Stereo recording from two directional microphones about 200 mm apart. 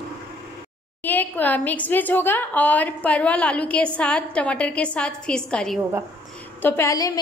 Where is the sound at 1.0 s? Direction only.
10° left (ahead or behind).